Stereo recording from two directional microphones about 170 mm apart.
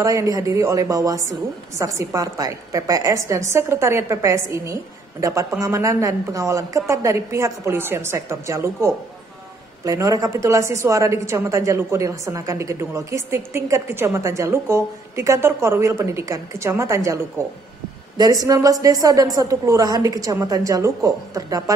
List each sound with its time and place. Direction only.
0.0 s a woman's voice: 20° right (ahead or behind)